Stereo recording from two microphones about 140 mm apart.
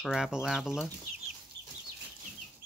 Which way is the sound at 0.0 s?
Centre (ahead or behind).